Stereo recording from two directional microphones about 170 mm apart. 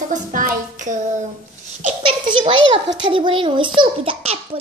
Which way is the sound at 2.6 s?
90° right.